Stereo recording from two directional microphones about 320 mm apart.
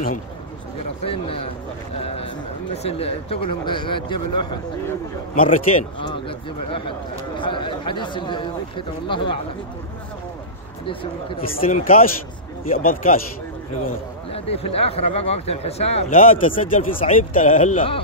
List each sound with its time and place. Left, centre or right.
1.0 s a man's voice: centre
10.9 s a man's voice: centre
11.4 s speech: left
14.3 s speech: centre